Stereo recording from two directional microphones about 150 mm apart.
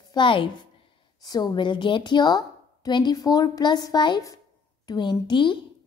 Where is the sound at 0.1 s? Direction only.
35° left (ahead or behind).